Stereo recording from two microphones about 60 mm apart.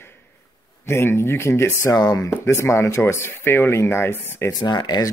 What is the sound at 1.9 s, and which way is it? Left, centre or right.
Speech, left.